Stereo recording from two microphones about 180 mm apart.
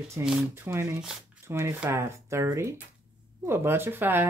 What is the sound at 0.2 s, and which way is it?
Speech, 5° right (ahead or behind).